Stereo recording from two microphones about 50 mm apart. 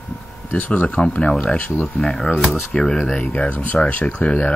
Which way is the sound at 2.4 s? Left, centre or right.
Centre.